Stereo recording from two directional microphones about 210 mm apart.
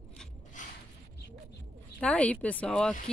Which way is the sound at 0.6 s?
35° left (ahead or behind).